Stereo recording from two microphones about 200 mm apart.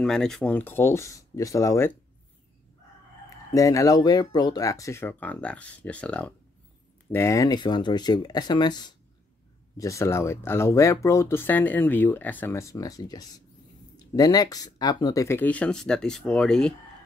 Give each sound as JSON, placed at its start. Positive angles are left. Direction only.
{"t": 0.0, "sound": "speech", "side_deg": 0}
{"t": 3.5, "sound": "speech", "side_deg": 15}